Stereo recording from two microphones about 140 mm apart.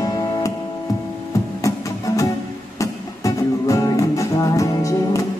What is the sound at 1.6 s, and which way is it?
Music, 25° left (ahead or behind).